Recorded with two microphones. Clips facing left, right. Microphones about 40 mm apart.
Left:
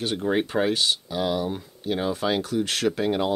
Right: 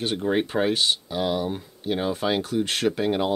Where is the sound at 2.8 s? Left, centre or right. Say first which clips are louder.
Even; centre.